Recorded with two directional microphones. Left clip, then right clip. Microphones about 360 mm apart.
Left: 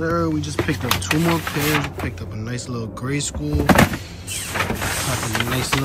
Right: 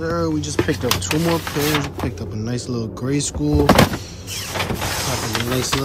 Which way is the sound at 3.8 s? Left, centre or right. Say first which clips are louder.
Right 1 dB; centre.